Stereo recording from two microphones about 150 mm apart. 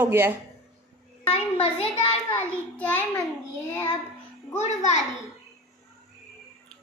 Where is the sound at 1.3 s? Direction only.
40° left (ahead or behind).